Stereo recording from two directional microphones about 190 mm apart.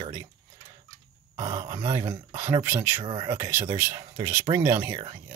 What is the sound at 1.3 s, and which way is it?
Speech, 15° right (ahead or behind).